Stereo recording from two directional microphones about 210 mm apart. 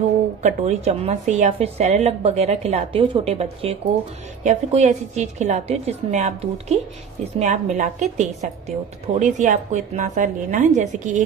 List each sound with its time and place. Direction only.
0.4 s a woman's voice: 35° right (ahead or behind)